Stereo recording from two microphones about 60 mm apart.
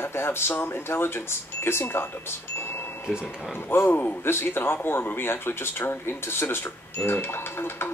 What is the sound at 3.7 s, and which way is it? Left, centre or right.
Speech, left.